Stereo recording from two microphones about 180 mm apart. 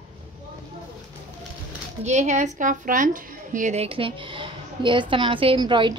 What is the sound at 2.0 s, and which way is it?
A woman's voice, 40° right (ahead or behind).